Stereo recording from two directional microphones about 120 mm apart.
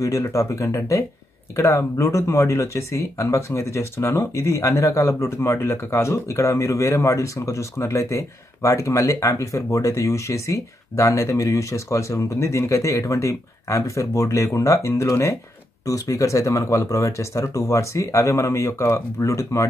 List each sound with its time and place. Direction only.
0.0 s speech: 25° left (ahead or behind)